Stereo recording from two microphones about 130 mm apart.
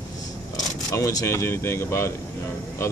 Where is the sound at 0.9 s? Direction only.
25° left (ahead or behind).